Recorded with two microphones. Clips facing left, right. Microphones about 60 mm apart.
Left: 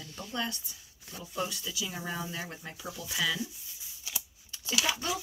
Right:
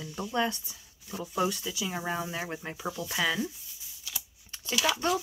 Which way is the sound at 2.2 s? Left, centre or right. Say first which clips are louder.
Right 4 dB; right.